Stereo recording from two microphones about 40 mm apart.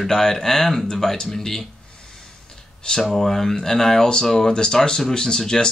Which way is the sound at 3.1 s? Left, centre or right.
Centre.